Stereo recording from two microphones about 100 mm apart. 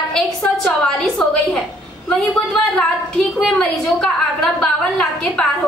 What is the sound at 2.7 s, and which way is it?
A woman's voice, centre (ahead or behind).